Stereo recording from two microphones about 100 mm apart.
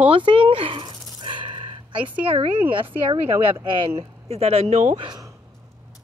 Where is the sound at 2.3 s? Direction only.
65° right (ahead or behind).